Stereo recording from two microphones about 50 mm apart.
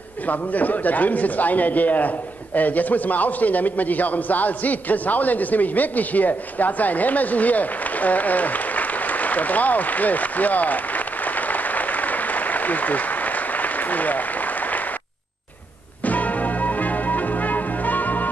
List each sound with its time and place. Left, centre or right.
0.3 s a man's voice: left
11.3 s applause: left
16.1 s music: left